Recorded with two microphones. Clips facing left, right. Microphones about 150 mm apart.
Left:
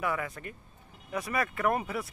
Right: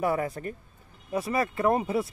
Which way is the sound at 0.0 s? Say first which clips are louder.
Right 6 dB; 35° right (ahead or behind).